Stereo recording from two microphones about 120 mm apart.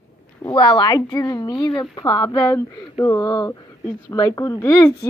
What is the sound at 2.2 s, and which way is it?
A woman's voice, 25° left (ahead or behind).